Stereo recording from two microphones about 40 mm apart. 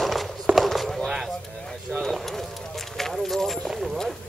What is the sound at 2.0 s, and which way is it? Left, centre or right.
Clip-clop, centre.